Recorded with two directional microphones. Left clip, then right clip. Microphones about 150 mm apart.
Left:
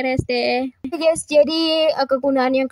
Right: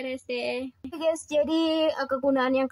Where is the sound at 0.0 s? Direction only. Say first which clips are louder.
Left 11 dB; 45° left (ahead or behind).